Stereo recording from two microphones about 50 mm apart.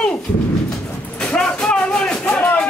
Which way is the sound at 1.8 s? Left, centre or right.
Centre.